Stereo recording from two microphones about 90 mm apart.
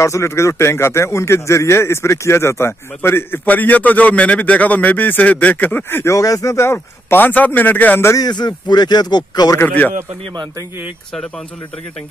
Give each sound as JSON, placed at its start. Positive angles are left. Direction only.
{"t": 0.0, "sound": "a man's voice", "side_deg": 35}
{"t": 6.1, "sound": "a man's voice", "side_deg": 40}
{"t": 8.3, "sound": "speech", "side_deg": 55}
{"t": 9.6, "sound": "a man's voice", "side_deg": 20}